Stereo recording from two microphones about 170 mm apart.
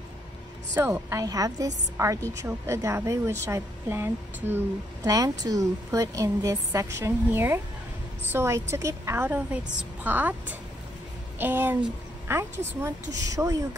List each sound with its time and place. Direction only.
0.7 s a woman's voice: 15° right (ahead or behind)